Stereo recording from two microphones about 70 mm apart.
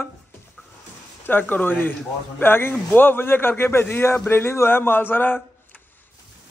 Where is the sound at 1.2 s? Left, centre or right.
Left.